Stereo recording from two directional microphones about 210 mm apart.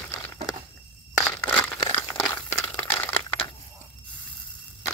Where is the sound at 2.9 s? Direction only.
10° left (ahead or behind).